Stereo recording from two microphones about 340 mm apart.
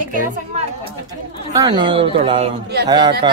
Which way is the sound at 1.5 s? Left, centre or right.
Centre.